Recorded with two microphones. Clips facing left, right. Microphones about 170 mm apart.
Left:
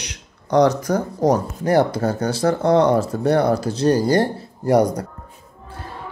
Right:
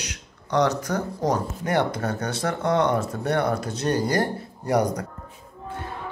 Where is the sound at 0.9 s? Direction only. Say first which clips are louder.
Left 6 dB; 35° left (ahead or behind).